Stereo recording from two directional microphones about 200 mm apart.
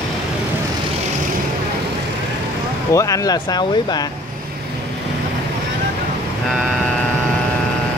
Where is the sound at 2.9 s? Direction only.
15° left (ahead or behind).